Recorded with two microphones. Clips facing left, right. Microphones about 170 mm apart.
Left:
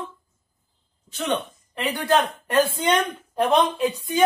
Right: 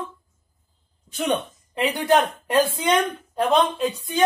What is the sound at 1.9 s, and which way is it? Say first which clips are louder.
Speech: right 1 dB; 15° right (ahead or behind).